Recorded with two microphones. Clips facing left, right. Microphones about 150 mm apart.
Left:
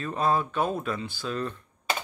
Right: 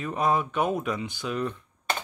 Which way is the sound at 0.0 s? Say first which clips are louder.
Even; 15° right (ahead or behind).